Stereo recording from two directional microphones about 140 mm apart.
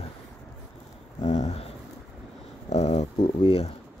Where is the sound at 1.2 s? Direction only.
50° left (ahead or behind).